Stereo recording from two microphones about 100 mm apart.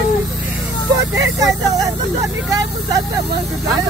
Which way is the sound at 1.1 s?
35° right (ahead or behind).